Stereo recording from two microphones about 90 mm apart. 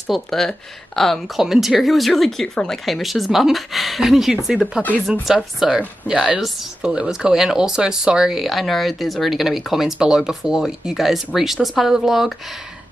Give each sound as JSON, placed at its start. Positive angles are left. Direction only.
{"t": 0.0, "sound": "speech", "side_deg": 5}